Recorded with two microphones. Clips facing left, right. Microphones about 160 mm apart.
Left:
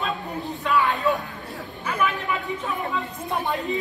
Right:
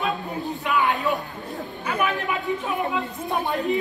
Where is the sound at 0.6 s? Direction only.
20° right (ahead or behind).